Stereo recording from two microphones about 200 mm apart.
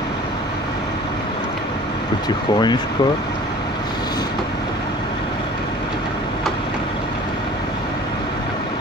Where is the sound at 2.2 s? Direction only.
20° left (ahead or behind).